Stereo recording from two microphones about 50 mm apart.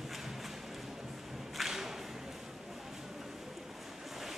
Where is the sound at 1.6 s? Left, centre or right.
Centre.